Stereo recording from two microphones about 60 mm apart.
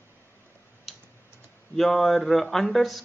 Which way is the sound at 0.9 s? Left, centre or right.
Centre.